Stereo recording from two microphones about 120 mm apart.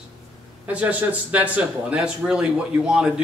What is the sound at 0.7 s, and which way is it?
Speech, 10° right (ahead or behind).